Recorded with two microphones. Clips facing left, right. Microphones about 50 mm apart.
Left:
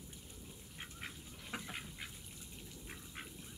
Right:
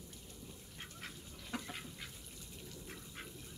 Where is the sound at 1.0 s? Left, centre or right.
Centre.